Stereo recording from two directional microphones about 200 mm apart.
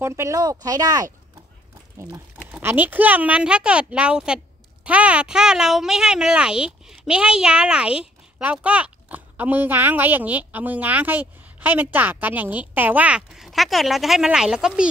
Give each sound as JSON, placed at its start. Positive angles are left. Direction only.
{"t": 0.0, "sound": "speech", "side_deg": -15}